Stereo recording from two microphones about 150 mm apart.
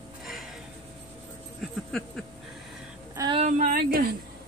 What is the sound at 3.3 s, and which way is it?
Speech, 55° right (ahead or behind).